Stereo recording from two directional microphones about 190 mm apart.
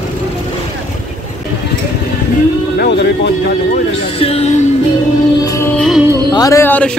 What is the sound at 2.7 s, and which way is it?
Speech, 60° left (ahead or behind).